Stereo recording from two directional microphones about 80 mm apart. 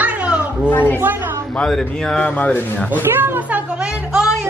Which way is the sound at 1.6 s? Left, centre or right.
Centre.